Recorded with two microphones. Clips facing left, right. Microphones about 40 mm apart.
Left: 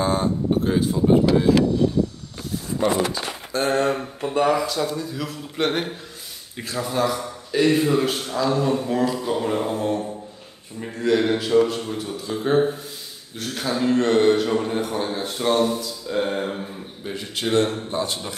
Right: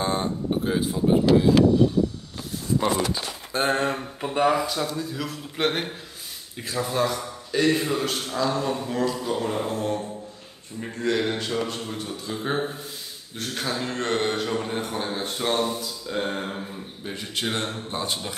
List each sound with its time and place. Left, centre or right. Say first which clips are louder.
0.0 s speech: left 4 dB; centre
3.1 s speech: left 2 dB; right
3.8 s a man's voice: left 4 dB; centre